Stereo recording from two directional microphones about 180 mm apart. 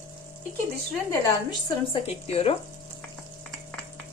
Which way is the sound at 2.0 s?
35° left (ahead or behind).